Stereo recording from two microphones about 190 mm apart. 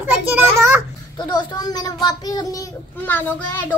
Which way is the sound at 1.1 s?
20° left (ahead or behind).